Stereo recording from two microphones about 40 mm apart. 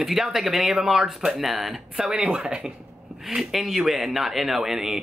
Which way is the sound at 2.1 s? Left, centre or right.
Right.